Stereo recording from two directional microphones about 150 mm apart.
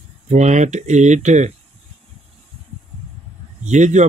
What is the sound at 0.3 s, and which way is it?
Speech, 50° right (ahead or behind).